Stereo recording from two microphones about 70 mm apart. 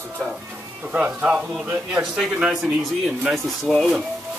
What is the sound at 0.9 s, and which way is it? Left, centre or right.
A man's voice, centre.